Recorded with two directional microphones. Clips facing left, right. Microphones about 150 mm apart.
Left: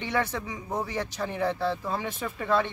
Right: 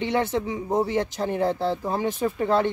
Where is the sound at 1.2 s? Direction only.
40° right (ahead or behind).